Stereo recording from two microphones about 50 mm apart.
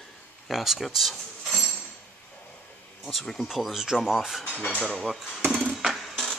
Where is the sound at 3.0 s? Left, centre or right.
Centre.